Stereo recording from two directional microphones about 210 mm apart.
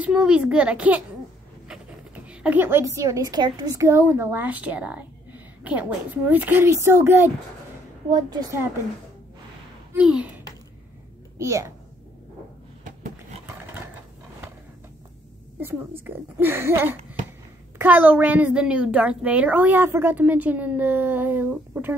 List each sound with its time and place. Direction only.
0.0 s a child's voice: 5° right (ahead or behind)
9.9 s a child's voice: 5° right (ahead or behind)
16.0 s a child's voice: 10° right (ahead or behind)